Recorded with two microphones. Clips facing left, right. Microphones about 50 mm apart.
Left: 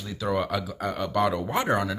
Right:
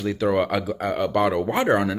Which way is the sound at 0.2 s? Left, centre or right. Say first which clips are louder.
Right 4 dB; right.